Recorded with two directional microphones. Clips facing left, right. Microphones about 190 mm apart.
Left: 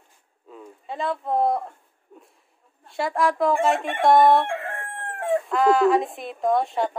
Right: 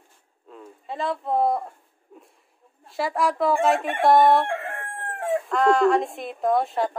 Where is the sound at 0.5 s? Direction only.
Centre (ahead or behind).